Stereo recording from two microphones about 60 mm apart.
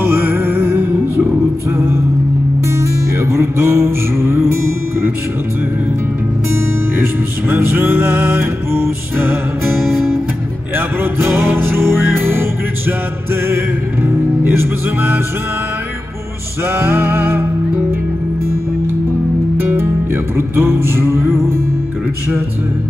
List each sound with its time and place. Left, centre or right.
0.0 s music: right
6.5 s music: right
11.0 s music: right
16.6 s music: right
19.6 s music: right